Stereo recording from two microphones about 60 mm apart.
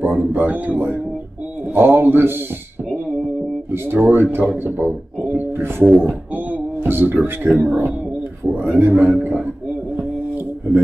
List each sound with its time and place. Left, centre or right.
0.0 s a sound: right
1.7 s speech: right
3.7 s speech: right